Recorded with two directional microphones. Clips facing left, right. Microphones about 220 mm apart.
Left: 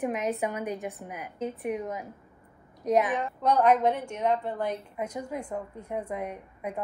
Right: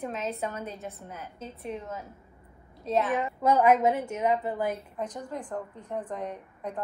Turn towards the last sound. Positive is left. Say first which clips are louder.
# left 1 dB
turn(degrees=10)  # may be behind; listen again after turning